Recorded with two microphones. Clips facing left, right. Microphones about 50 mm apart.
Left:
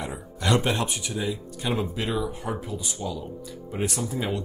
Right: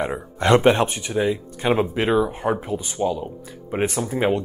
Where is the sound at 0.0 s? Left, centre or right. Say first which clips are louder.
Right 8 dB; right.